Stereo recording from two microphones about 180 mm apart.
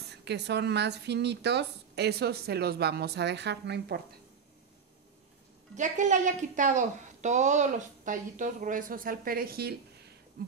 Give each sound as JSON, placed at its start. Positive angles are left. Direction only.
{"t": 0.0, "sound": "speech", "side_deg": -70}
{"t": 5.8, "sound": "speech", "side_deg": -45}